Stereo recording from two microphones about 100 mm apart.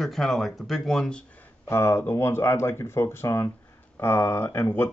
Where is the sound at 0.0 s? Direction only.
5° left (ahead or behind).